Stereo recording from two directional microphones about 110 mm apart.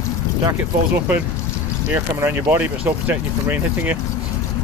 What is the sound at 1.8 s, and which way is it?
Speech, 15° right (ahead or behind).